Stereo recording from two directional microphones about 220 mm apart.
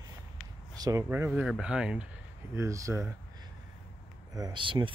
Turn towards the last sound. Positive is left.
turn(degrees=-20)  # may be behind; listen again after turning